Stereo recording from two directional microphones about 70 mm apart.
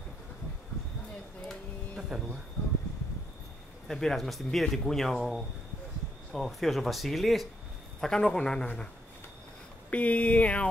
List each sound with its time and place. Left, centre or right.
2.0 s speech: centre
3.8 s speech: centre
9.8 s speech: left